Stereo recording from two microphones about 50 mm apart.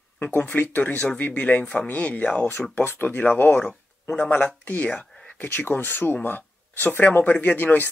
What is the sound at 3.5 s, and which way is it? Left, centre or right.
Speech, left.